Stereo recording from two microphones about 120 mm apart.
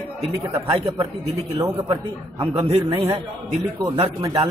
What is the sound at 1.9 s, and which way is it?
Speech, 40° right (ahead or behind).